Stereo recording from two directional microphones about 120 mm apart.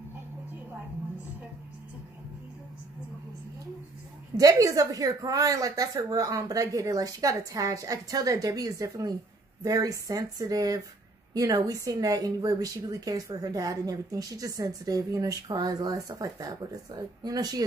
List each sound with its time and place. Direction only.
4.4 s a woman's voice: 30° right (ahead or behind)